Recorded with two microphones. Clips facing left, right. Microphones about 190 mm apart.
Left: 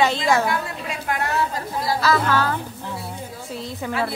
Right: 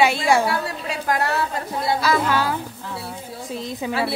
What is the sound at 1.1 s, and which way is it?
Speech, 35° right (ahead or behind).